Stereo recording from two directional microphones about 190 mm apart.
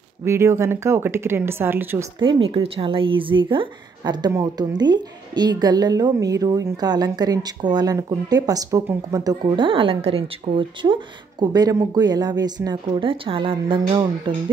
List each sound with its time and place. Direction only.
0.2 s speech: 15° right (ahead or behind)
2.1 s speech: 25° right (ahead or behind)